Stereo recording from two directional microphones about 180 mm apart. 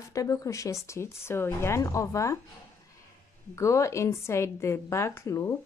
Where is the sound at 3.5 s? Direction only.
15° left (ahead or behind).